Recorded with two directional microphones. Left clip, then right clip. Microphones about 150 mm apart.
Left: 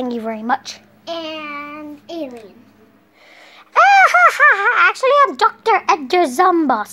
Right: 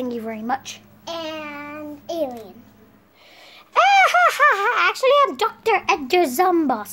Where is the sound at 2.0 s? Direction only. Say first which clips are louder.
Right 4 dB; 40° right (ahead or behind).